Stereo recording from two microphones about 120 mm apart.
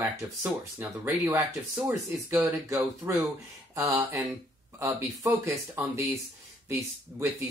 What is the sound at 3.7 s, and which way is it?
Speech, 30° right (ahead or behind).